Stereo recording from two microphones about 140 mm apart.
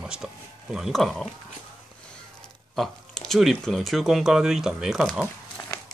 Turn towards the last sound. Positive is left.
turn(degrees=30)  # may be behind; listen again after turning